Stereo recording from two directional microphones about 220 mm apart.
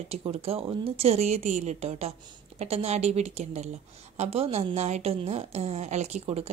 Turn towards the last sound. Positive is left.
turn(degrees=-30)  # may be behind; listen again after turning